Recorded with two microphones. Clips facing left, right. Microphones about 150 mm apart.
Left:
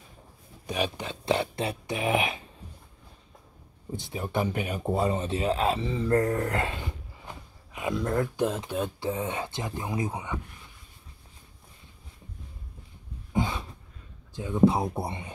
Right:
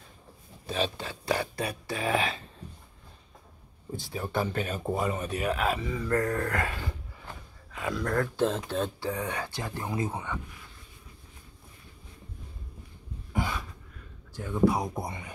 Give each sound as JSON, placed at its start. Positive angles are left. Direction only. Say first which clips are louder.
{"t": 0.7, "sound": "speech", "louder": "left 1 dB", "side_deg": 15}
{"t": 3.9, "sound": "speech", "louder": "left 1 dB", "side_deg": 20}
{"t": 4.9, "sound": "speech", "louder": "left 4 dB", "side_deg": 30}
{"t": 13.3, "sound": "a sound", "louder": "left 3 dB", "side_deg": 20}
{"t": 14.3, "sound": "speech", "louder": "left 3 dB", "side_deg": 20}